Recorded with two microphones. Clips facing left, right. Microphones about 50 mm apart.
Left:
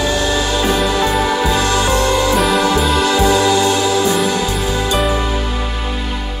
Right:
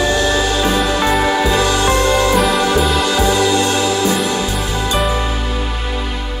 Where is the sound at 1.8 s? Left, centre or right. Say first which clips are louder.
Right 1 dB; right.